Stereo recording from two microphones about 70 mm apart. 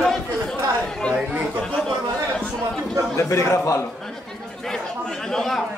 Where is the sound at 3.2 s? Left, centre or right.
Left.